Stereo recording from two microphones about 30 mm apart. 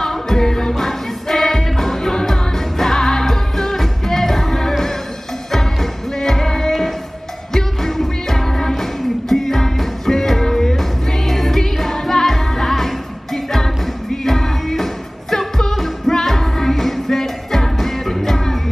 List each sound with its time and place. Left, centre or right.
0.0 s music: centre